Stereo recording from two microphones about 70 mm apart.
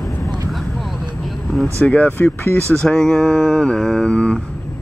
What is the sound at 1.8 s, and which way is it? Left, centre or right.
Speech, centre.